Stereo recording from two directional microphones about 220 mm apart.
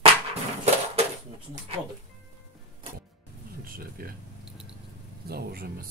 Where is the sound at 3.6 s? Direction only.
40° right (ahead or behind).